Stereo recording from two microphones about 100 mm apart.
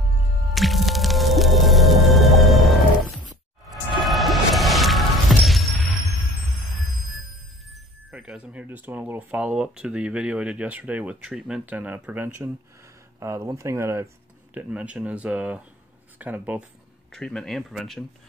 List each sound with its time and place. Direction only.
0.6 s music: centre (ahead or behind)
7.7 s speech: 5° right (ahead or behind)
13.2 s speech: 30° right (ahead or behind)
14.5 s speech: 15° right (ahead or behind)
17.1 s speech: 5° left (ahead or behind)